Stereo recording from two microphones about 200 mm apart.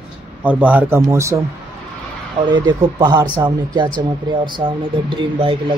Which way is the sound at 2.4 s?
20° right (ahead or behind).